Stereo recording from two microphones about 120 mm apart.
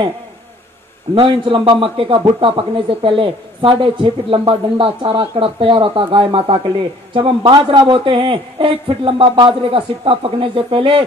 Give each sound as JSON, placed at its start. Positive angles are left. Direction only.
{"t": 1.1, "sound": "speech", "side_deg": -45}